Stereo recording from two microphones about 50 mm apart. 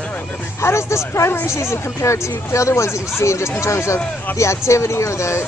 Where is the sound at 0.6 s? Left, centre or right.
Left.